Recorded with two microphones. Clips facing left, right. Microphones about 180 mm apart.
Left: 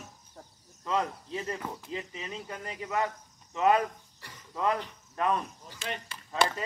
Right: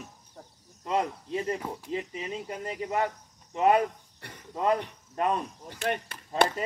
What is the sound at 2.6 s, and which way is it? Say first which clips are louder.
Speech: right 2 dB; 30° right (ahead or behind).